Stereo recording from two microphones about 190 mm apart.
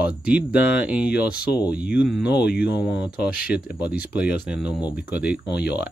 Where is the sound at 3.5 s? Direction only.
5° right (ahead or behind).